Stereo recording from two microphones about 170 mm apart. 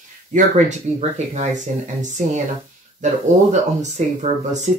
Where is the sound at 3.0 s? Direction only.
45° right (ahead or behind).